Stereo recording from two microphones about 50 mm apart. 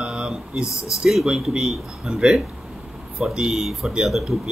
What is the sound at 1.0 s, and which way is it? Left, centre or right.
Speech, centre.